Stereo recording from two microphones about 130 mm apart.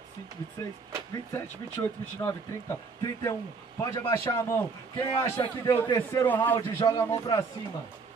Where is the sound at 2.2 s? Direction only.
20° left (ahead or behind).